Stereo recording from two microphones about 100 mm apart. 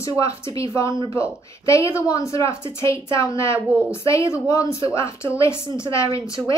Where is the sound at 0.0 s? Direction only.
30° left (ahead or behind).